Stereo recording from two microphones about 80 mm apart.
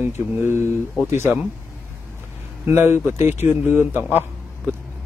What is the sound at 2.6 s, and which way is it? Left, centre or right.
Speech, right.